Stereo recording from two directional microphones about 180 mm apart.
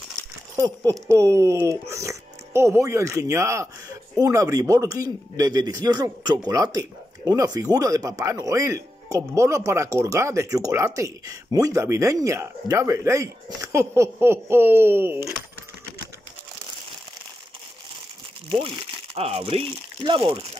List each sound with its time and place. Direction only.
0.6 s speech: 20° right (ahead or behind)
18.5 s speech: 30° right (ahead or behind)